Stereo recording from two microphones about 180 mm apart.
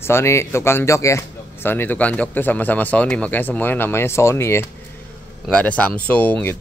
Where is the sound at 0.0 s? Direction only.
15° left (ahead or behind).